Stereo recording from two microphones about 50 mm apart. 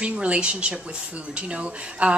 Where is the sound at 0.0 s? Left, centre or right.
Right.